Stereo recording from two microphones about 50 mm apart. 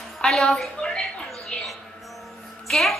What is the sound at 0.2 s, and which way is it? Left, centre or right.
Speech, centre.